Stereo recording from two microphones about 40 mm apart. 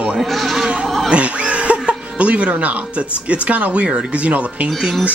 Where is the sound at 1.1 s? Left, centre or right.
Right.